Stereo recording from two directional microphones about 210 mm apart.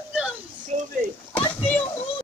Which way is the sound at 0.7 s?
35° right (ahead or behind).